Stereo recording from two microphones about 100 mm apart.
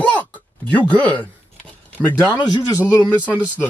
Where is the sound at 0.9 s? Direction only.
15° left (ahead or behind).